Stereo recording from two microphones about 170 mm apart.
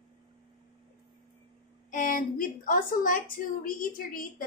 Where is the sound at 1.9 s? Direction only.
50° left (ahead or behind).